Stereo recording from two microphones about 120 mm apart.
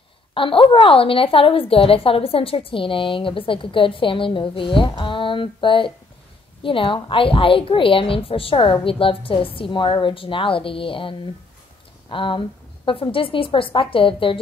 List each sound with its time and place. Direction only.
0.3 s a woman's voice: 45° left (ahead or behind)